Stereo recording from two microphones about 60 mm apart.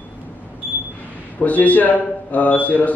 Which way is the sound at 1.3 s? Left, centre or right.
Left.